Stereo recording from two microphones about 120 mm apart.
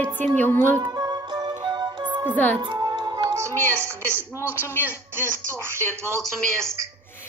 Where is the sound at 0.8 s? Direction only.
35° right (ahead or behind).